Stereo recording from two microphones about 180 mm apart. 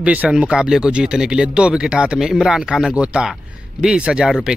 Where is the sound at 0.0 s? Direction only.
5° right (ahead or behind).